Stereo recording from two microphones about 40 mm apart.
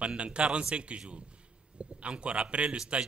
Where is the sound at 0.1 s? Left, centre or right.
Right.